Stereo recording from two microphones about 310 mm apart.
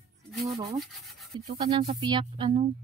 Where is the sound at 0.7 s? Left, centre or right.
Centre.